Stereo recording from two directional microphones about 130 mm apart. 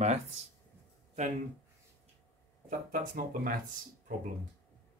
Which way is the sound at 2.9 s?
90° right.